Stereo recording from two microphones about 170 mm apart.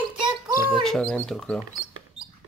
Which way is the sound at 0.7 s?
Centre (ahead or behind).